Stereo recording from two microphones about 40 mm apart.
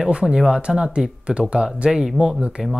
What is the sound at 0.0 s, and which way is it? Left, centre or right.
Speech, centre.